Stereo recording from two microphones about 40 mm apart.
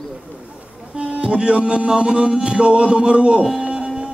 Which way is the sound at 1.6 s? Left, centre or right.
Right.